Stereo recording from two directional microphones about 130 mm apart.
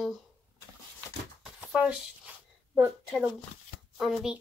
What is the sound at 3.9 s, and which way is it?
Speech, 5° right (ahead or behind).